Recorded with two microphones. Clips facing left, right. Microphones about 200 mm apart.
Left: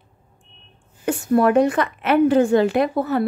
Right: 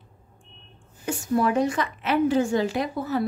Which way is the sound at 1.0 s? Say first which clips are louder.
Left 6 dB; 60° left (ahead or behind).